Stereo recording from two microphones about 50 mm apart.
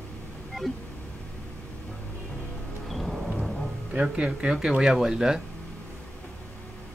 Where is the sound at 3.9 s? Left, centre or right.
Right.